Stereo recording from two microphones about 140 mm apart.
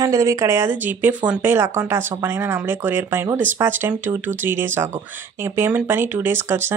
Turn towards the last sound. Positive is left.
turn(degrees=-15)  # may be behind; listen again after turning